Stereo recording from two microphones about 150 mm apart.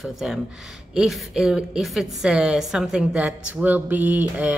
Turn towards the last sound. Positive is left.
turn(degrees=-10)  # may be behind; listen again after turning